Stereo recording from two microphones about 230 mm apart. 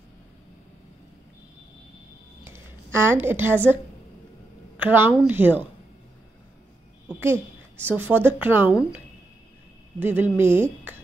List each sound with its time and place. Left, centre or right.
2.4 s a sound: centre
4.7 s speech: centre
7.1 s speech: centre